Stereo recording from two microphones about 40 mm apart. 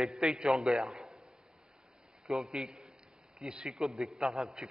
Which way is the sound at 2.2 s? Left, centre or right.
Centre.